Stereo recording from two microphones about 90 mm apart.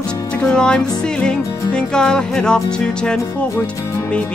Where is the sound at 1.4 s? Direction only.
35° left (ahead or behind).